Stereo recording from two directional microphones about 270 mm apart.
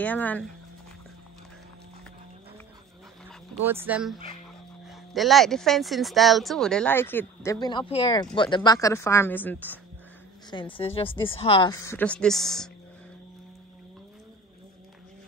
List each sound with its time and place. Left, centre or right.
0.0 s speech: centre
3.6 s a woman's voice: centre
10.5 s a woman's voice: centre